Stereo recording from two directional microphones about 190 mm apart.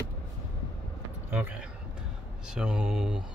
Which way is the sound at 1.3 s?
5° right (ahead or behind).